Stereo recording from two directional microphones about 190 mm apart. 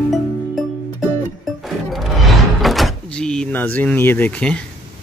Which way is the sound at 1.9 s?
Centre (ahead or behind).